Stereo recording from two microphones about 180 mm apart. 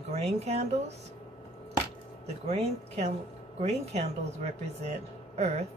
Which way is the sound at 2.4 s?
35° right (ahead or behind).